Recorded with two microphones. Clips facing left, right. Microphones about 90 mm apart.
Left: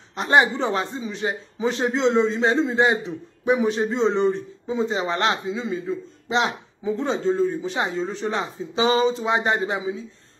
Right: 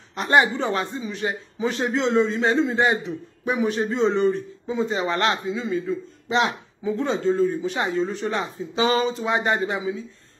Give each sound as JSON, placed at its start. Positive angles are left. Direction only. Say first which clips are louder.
{"t": 0.1, "sound": "a man's voice", "louder": "even", "side_deg": 25}